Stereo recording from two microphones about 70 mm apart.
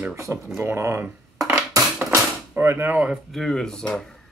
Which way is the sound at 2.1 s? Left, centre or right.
Right.